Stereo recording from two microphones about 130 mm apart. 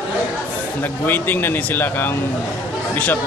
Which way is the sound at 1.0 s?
15° left (ahead or behind).